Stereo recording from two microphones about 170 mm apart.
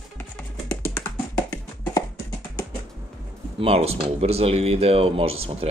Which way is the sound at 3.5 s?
35° right (ahead or behind).